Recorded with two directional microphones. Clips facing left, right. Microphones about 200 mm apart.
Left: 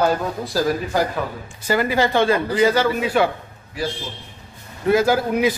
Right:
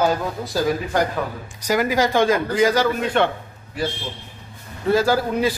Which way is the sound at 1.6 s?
10° right (ahead or behind).